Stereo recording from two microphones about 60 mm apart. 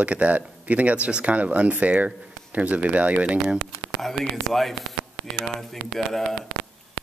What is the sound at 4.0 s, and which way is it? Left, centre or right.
Speech, centre.